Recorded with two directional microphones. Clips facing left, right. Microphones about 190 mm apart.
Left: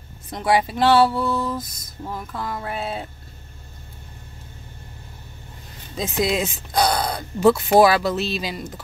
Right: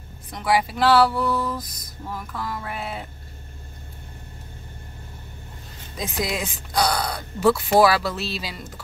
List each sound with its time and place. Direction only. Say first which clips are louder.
0.3 s speech: left 2 dB; 25° left (ahead or behind)
5.9 s speech: left 5 dB; 25° left (ahead or behind)